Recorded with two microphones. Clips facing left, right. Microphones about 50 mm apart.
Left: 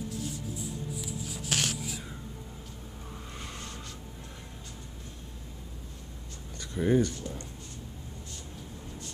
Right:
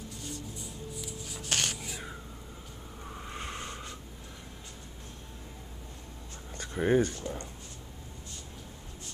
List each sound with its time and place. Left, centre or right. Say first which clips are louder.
0.1 s music: left 5 dB; centre
3.2 s vehicle: right 4 dB; right
6.6 s speech: even; right